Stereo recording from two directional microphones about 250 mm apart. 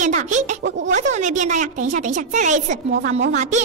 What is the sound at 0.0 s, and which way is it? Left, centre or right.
Speech, right.